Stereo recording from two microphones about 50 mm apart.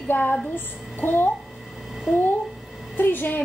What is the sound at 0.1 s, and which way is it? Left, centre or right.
A woman's voice, left.